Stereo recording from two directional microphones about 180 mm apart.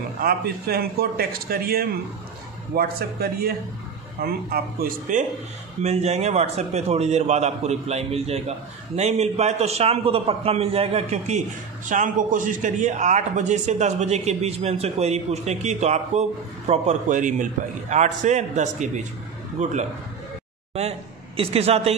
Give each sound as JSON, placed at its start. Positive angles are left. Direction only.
{"t": 0.2, "sound": "a man's voice", "side_deg": -55}
{"t": 5.8, "sound": "a man's voice", "side_deg": -35}
{"t": 21.4, "sound": "a man's voice", "side_deg": -35}